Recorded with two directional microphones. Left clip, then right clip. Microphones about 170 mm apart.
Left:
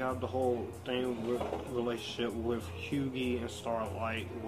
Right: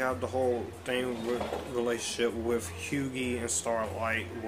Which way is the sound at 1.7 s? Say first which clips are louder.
Right 7 dB; 5° right (ahead or behind).